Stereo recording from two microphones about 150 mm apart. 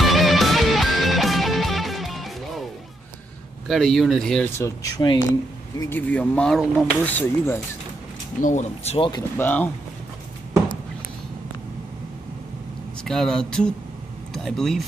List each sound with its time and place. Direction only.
0.0 s music: centre (ahead or behind)
3.6 s speech: centre (ahead or behind)
4.6 s speech: 25° left (ahead or behind)
5.8 s speech: 15° left (ahead or behind)
6.6 s speech: 5° right (ahead or behind)
7.2 s speech: 15° left (ahead or behind)
8.4 s speech: 55° left (ahead or behind); by 9.2 s 35° left (ahead or behind)
9.4 s speech: 10° left (ahead or behind)
13.0 s speech: 5° left (ahead or behind)